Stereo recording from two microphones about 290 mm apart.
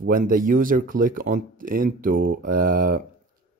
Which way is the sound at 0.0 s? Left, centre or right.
Right.